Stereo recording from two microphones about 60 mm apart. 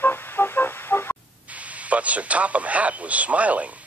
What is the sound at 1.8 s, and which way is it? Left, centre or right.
Speech, right.